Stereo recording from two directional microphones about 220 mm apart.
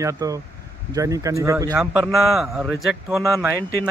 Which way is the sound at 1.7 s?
Centre (ahead or behind).